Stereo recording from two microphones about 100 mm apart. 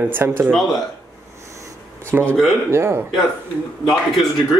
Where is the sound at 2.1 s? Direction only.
25° right (ahead or behind).